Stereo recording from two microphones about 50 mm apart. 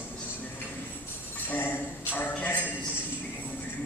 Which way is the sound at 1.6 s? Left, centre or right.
Left.